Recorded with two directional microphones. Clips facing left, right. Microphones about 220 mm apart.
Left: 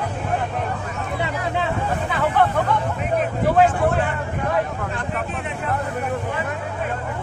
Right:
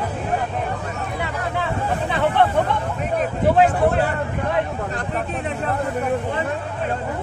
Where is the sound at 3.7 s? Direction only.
35° right (ahead or behind).